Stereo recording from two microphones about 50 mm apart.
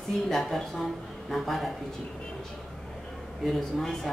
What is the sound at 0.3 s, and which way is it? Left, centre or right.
Speech, centre.